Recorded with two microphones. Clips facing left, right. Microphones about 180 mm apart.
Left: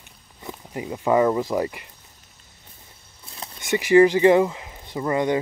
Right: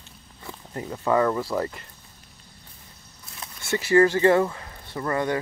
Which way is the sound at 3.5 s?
15° left (ahead or behind).